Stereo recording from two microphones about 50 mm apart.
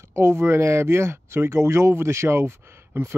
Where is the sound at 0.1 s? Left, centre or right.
Right.